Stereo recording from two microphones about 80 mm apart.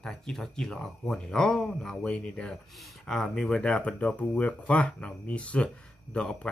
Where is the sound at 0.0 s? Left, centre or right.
Centre.